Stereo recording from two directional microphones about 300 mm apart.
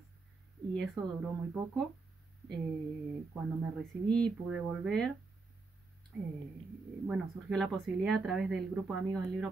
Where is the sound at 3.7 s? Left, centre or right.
Centre.